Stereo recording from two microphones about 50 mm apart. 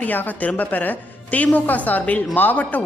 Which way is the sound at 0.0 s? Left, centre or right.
Left.